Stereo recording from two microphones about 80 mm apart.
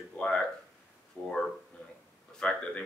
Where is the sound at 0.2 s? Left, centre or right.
Centre.